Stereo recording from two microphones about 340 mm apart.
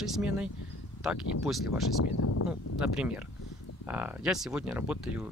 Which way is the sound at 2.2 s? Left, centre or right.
Left.